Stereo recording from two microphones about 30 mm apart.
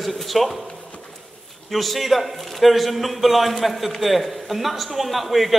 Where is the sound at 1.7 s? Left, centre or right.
Centre.